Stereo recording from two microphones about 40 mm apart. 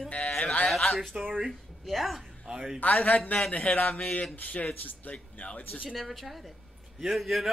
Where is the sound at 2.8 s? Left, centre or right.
Left.